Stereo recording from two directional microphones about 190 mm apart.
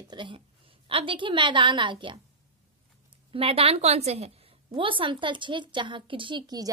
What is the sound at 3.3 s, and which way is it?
Speech, 30° right (ahead or behind).